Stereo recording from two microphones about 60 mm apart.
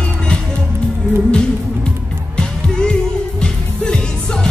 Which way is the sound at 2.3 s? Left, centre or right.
Centre.